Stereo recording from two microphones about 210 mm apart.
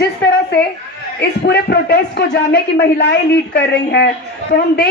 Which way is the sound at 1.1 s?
50° left (ahead or behind).